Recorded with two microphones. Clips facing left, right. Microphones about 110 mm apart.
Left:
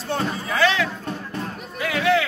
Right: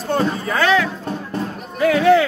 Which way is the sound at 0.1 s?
50° right (ahead or behind).